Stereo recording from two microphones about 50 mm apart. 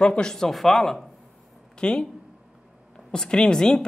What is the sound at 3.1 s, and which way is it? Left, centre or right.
Speech, centre.